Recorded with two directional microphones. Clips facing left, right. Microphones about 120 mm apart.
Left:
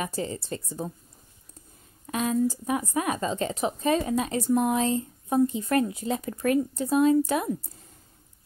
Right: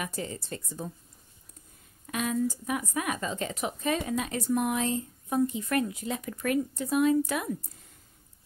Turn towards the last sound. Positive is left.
turn(degrees=30)  # may be behind; listen again after turning